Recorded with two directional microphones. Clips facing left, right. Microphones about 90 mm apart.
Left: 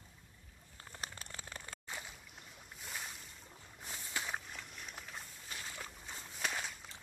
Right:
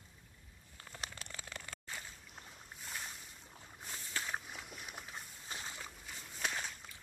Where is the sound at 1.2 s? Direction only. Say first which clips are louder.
Even; 35° left (ahead or behind).